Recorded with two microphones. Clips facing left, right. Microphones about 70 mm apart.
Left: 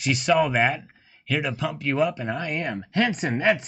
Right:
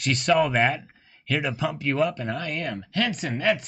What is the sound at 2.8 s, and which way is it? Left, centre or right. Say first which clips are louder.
Speech: left 5 dB; left.